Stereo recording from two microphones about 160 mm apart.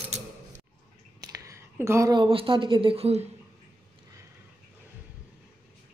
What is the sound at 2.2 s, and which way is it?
Speech, 35° right (ahead or behind).